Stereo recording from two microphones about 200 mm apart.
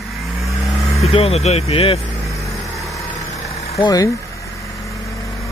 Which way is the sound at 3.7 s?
20° left (ahead or behind).